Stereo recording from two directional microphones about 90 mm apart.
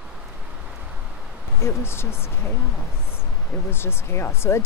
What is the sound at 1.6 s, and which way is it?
Speech, 25° left (ahead or behind).